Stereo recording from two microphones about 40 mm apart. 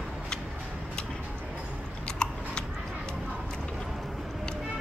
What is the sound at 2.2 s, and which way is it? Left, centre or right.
Biting, left.